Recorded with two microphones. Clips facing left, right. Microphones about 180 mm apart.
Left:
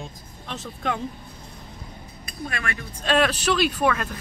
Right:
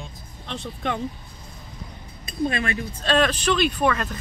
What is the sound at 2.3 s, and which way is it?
Speech, 20° right (ahead or behind).